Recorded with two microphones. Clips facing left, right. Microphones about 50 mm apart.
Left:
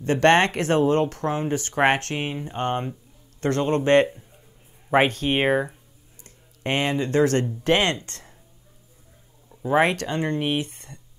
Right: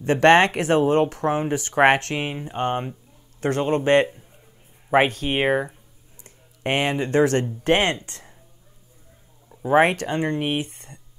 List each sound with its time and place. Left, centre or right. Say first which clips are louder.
0.0 s speech: right 2 dB; right
4.8 s a sound: right 1 dB; centre
5.2 s speech: even; centre
6.2 s speech: right 2 dB; right
9.5 s a sound: right 3 dB; centre
9.8 s speech: right 1 dB; right